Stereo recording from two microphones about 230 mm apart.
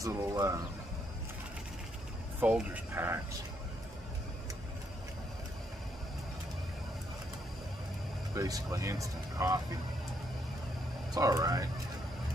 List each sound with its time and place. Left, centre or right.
0.0 s speech: centre
2.4 s speech: centre
8.4 s speech: centre
11.1 s speech: centre